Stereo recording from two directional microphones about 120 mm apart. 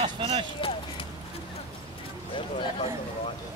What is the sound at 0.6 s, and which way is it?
Clip-clop, 50° left (ahead or behind).